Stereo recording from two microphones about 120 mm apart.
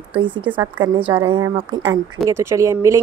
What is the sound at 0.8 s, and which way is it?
Speech, 35° right (ahead or behind).